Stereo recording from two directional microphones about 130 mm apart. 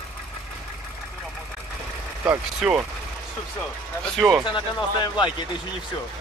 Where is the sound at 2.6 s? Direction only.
5° right (ahead or behind).